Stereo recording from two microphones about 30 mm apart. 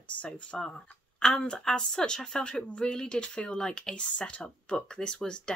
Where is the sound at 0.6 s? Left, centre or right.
Centre.